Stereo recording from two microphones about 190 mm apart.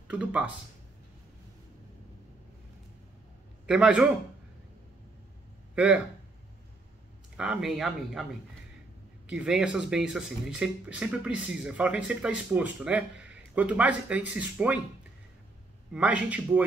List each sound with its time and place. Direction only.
0.1 s a man's voice: 5° right (ahead or behind)
3.6 s speech: 5° right (ahead or behind)
7.3 s speech: 5° right (ahead or behind)
9.3 s speech: 5° right (ahead or behind)
15.9 s a man's voice: 5° right (ahead or behind)